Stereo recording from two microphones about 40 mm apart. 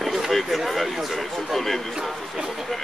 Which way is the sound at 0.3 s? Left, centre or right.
Centre.